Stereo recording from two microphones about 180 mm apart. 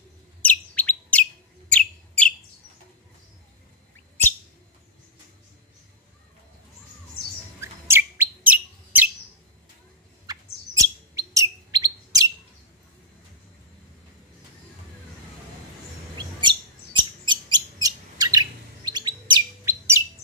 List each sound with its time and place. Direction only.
0.4 s chirp: 10° left (ahead or behind)
1.7 s bird: 5° left (ahead or behind)
7.6 s bird: 15° right (ahead or behind)
10.2 s bird: 20° right (ahead or behind)
16.2 s bird: 25° right (ahead or behind)
19.6 s bird: 15° right (ahead or behind)